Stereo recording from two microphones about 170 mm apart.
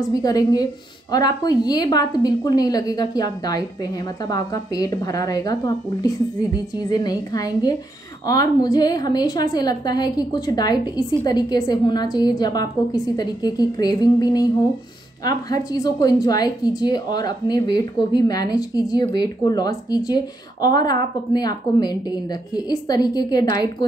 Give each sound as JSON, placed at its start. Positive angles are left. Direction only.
{"t": 0.0, "sound": "a woman's voice", "side_deg": 20}